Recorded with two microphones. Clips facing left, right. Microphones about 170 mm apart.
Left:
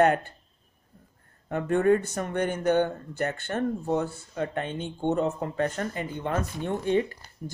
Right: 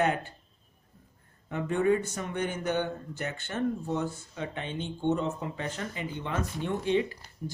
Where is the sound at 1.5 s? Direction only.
50° left (ahead or behind).